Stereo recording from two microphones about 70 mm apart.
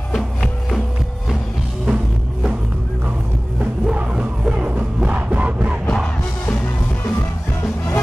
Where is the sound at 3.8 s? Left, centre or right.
Centre.